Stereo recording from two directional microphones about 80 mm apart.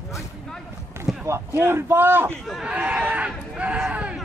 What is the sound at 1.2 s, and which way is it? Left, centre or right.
A man's voice, right.